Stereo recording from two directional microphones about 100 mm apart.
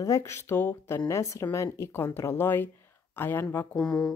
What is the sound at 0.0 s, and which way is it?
Speech, 30° left (ahead or behind).